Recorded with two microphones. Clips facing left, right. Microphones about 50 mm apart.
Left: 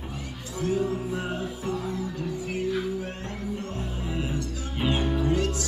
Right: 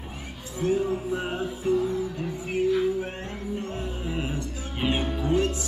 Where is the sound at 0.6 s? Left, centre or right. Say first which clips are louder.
Right 2 dB; right.